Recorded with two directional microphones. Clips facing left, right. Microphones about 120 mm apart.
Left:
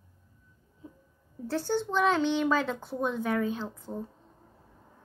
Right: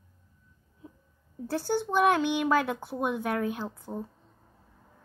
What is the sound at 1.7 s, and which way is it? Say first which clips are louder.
A child's voice: right 2 dB; 15° right (ahead or behind).